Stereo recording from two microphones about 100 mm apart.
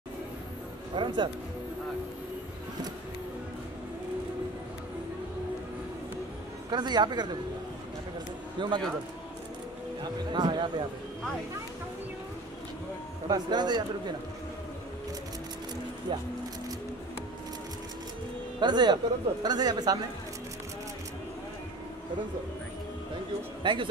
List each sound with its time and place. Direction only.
0.9 s a man's voice: 55° right (ahead or behind)
6.7 s a man's voice: 45° right (ahead or behind)
8.5 s a man's voice: 50° right (ahead or behind)
10.3 s a man's voice: 50° right (ahead or behind)
13.3 s a man's voice: 45° right (ahead or behind)
16.1 s a man's voice: 45° right (ahead or behind)
18.6 s a man's voice: 45° right (ahead or behind)
23.6 s a man's voice: 55° right (ahead or behind)